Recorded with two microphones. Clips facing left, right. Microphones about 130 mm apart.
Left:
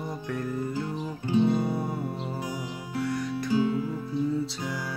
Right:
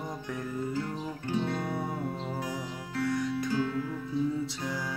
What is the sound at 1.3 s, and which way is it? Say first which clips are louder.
Music: left 8 dB; 15° left (ahead or behind).